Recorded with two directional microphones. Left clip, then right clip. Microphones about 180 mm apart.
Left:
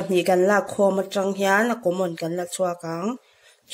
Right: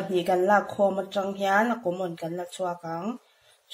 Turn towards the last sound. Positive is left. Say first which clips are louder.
# left 4 dB
turn(degrees=45)  # may be behind; listen again after turning